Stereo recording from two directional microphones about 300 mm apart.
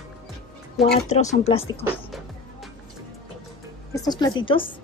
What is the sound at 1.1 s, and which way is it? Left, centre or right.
Speech, left.